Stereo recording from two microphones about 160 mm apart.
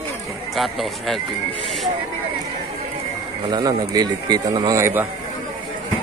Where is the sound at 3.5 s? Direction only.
25° right (ahead or behind).